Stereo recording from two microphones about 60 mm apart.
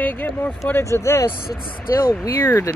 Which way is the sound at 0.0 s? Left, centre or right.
Left.